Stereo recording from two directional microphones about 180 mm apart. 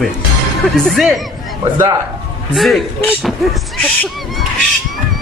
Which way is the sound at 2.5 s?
Centre (ahead or behind).